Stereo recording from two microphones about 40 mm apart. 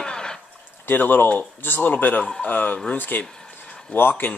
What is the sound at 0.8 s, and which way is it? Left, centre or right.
Speech, left.